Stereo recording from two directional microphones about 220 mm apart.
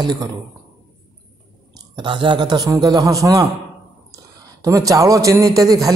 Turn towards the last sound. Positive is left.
turn(degrees=-15)  # may be behind; listen again after turning